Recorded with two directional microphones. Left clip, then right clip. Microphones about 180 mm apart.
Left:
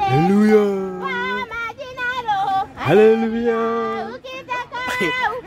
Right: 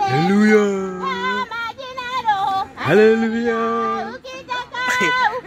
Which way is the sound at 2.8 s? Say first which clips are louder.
Even; 10° left (ahead or behind).